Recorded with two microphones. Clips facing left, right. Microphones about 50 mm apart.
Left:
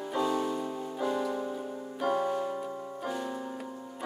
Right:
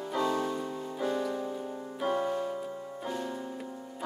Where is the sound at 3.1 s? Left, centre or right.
Centre.